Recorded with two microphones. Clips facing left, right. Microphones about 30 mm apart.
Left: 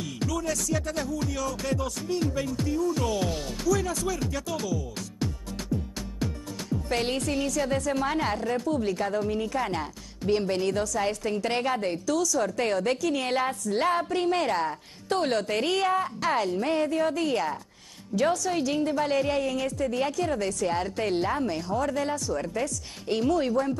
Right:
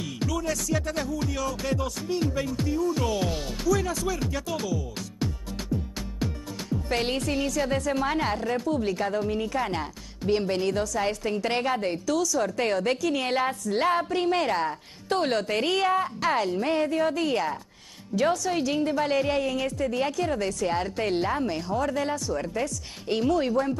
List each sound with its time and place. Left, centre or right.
0.0 s music: centre